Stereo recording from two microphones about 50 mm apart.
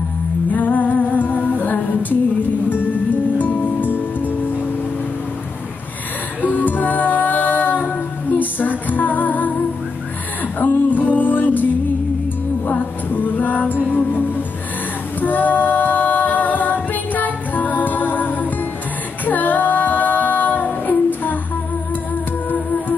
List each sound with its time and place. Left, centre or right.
0.5 s music: left
3.3 s music: left
6.4 s music: left
10.6 s music: left
12.6 s music: left
19.2 s female singing: left
22.5 s music: left